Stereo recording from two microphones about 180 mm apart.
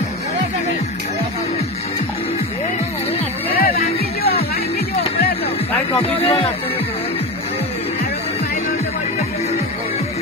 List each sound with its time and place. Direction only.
3.5 s music: 55° left (ahead or behind)
5.9 s speech: 30° left (ahead or behind)